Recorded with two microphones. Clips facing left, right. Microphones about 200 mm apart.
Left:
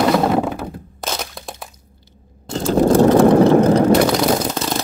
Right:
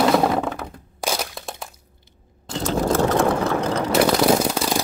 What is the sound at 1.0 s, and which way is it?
Crack, 10° right (ahead or behind).